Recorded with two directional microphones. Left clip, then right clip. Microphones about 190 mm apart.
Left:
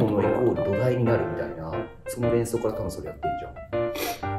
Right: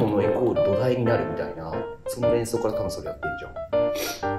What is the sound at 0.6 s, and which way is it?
Speech, 15° right (ahead or behind).